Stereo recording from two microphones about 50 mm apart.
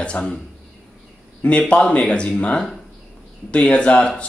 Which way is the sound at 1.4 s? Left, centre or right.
Left.